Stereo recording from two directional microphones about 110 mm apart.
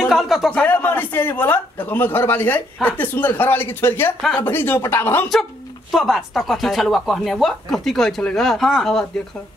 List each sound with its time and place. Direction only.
0.0 s a sound: centre (ahead or behind)
0.5 s speech: 15° left (ahead or behind)
5.3 s speech: centre (ahead or behind)